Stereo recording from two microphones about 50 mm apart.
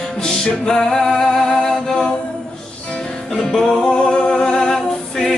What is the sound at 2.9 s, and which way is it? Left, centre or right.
Music, centre.